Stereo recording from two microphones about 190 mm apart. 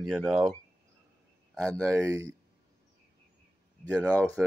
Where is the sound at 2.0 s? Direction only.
15° right (ahead or behind).